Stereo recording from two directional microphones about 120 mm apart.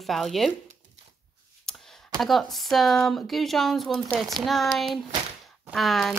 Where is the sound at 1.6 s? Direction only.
Centre (ahead or behind).